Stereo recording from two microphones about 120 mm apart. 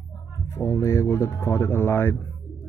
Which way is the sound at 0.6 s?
25° left (ahead or behind).